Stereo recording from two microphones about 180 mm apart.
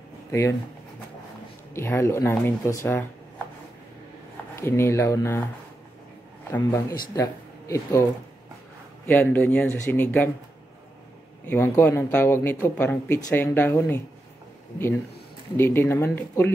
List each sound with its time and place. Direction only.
0.3 s speech: 15° left (ahead or behind)
1.7 s speech: 15° left (ahead or behind)
4.6 s speech: 15° left (ahead or behind)
6.5 s speech: 15° left (ahead or behind)
9.0 s speech: 10° left (ahead or behind)
11.4 s speech: 10° left (ahead or behind)
15.5 s speech: 15° left (ahead or behind)